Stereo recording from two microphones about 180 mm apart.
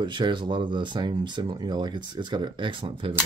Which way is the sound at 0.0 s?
25° right (ahead or behind).